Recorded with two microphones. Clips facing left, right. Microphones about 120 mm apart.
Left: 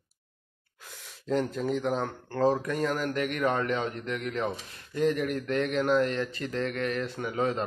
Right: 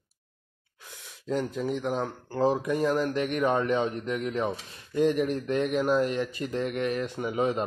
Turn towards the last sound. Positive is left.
turn(degrees=-20)  # may be behind; listen again after turning